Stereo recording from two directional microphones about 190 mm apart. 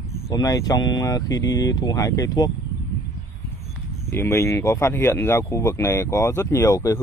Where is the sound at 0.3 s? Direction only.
20° left (ahead or behind).